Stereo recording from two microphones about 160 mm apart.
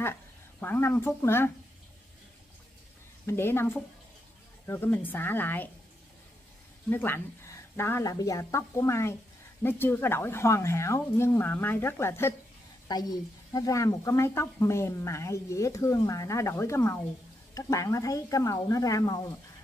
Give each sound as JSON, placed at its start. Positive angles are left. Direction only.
{"t": 0.0, "sound": "speech", "side_deg": 15}
{"t": 3.3, "sound": "speech", "side_deg": 15}
{"t": 6.9, "sound": "a woman's voice", "side_deg": 10}